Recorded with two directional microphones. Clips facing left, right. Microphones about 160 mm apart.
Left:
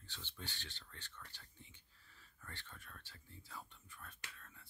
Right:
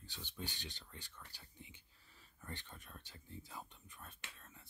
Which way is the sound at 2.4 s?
15° right (ahead or behind).